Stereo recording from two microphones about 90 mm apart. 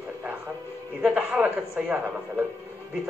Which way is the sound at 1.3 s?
20° right (ahead or behind).